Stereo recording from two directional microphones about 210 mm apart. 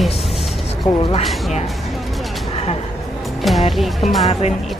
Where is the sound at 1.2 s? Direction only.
Centre (ahead or behind).